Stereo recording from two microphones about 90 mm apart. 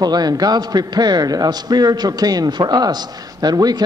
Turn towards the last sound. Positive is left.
turn(degrees=-50)  # may be behind; listen again after turning